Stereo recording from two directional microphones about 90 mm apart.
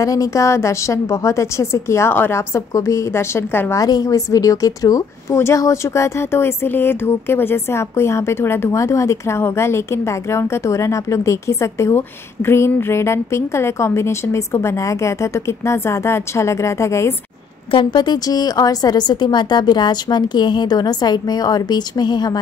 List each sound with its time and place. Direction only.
0.0 s speech: 40° left (ahead or behind)
3.7 s speech: 45° left (ahead or behind)
17.6 s a woman's voice: 65° left (ahead or behind)